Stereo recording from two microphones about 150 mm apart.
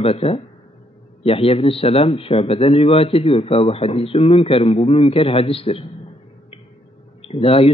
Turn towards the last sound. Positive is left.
turn(degrees=40)  # may be behind; listen again after turning